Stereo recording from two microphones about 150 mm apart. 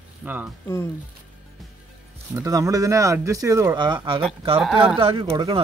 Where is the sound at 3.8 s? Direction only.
30° right (ahead or behind).